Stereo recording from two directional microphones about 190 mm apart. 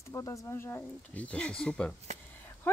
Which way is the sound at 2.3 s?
10° left (ahead or behind).